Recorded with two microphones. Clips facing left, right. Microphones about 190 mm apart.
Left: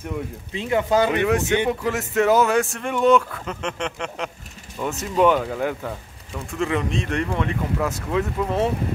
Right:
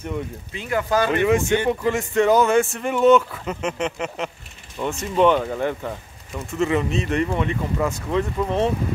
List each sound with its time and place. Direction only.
0.5 s speech: 25° left (ahead or behind)
1.2 s speech: centre (ahead or behind)